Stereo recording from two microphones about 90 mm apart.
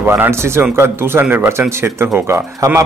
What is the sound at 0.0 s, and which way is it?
Speech, 25° right (ahead or behind).